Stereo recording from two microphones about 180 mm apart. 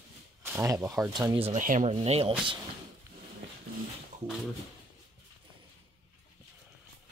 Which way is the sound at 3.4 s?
85° right.